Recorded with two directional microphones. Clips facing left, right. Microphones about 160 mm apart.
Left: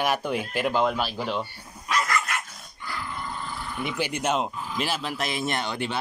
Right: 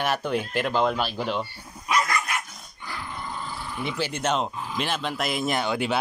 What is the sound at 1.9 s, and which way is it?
Dog, 15° right (ahead or behind).